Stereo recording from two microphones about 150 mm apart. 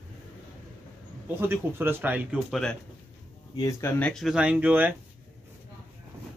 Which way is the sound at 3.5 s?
20° left (ahead or behind).